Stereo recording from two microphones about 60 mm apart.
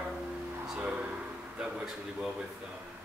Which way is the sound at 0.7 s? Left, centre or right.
Right.